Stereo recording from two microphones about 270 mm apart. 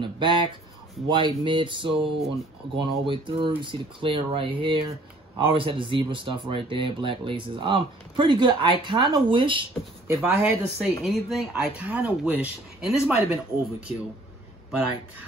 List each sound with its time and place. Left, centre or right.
0.0 s a sound: centre
1.0 s speech: centre
10.2 s speech: centre